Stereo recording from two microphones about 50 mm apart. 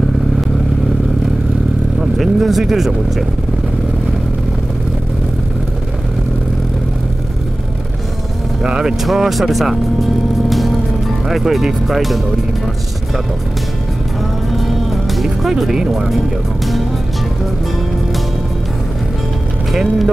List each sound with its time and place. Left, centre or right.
2.0 s speech: centre
8.6 s speech: centre
9.0 s speech: centre
11.2 s speech: centre
14.7 s music: centre
15.4 s speech: centre
19.7 s speech: centre